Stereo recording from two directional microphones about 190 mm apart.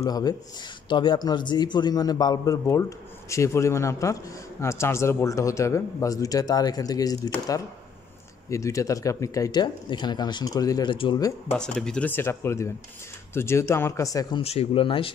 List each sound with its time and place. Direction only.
0.0 s a man's voice: 20° left (ahead or behind)
11.5 s a man's voice: 5° left (ahead or behind)
14.4 s speech: 35° left (ahead or behind)